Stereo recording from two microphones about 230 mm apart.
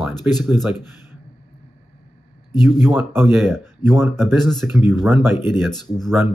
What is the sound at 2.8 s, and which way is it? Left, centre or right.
Speech, centre.